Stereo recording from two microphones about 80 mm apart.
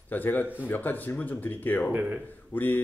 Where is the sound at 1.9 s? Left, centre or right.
Right.